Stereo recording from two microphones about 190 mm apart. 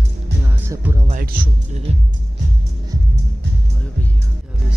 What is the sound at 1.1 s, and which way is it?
Speech, 50° right (ahead or behind).